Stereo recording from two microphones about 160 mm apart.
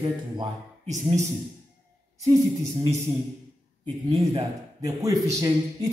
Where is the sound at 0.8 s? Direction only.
45° right (ahead or behind).